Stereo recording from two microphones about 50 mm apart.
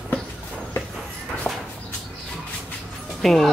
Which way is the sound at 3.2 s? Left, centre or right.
Centre.